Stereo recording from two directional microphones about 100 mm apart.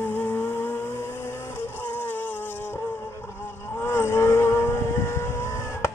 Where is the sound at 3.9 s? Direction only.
25° left (ahead or behind).